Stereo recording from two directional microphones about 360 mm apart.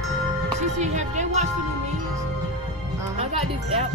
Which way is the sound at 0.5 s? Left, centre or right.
Centre.